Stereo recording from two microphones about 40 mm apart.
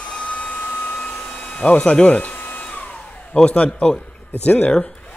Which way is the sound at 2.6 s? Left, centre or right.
Left.